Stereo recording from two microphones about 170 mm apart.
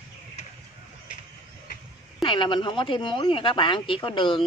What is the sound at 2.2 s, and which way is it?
Speech, 30° left (ahead or behind).